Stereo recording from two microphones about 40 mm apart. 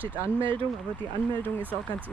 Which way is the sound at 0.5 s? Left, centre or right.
Left.